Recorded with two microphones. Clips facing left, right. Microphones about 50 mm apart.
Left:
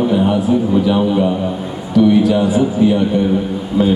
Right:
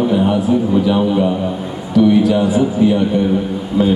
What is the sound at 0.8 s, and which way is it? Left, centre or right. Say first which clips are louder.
Speech: even; centre.